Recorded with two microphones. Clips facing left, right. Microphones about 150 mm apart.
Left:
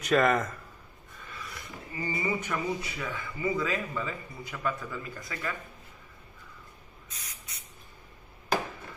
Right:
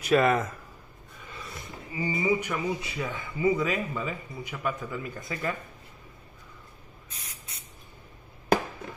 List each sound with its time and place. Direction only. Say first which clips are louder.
0.0 s speech: right 2 dB; 5° right (ahead or behind)
1.3 s a sound: right 2 dB; 25° right (ahead or behind)
1.9 s speech: right 5 dB; 15° right (ahead or behind)
7.1 s spray: right 1 dB; 30° right (ahead or behind)